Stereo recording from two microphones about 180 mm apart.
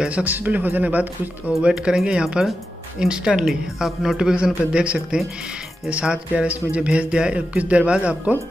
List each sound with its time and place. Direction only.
0.0 s speech: 10° right (ahead or behind)